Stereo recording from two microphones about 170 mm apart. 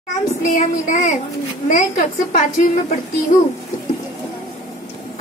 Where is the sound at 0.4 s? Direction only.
50° left (ahead or behind).